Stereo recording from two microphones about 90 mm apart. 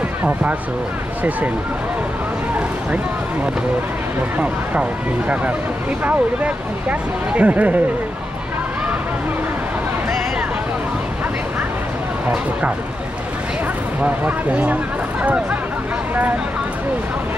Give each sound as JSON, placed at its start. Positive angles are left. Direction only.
{"t": 0.2, "sound": "speech", "side_deg": -15}
{"t": 6.0, "sound": "speech", "side_deg": -15}
{"t": 14.0, "sound": "speech", "side_deg": -15}